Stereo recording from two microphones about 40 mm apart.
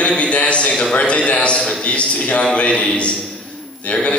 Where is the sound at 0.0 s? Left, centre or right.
Left.